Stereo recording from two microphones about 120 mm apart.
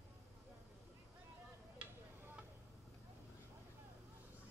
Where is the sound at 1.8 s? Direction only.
10° right (ahead or behind).